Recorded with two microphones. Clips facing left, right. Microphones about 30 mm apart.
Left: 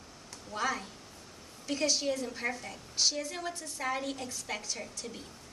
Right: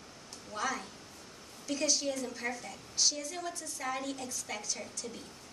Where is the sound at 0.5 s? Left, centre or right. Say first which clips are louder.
Left 2 dB; centre.